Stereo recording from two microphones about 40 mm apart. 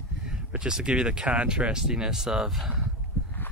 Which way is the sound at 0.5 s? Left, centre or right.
Centre.